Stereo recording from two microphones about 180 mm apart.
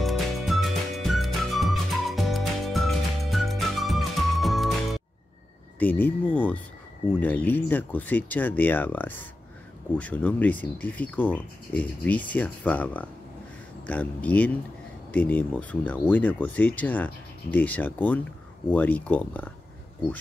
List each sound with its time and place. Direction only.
0.0 s music: centre (ahead or behind)
5.8 s speech: 10° left (ahead or behind)